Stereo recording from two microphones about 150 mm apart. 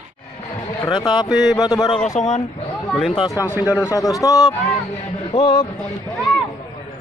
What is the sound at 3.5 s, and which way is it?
Speech, 15° right (ahead or behind).